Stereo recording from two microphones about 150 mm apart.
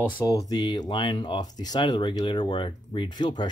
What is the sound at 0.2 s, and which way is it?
Speech, 25° left (ahead or behind).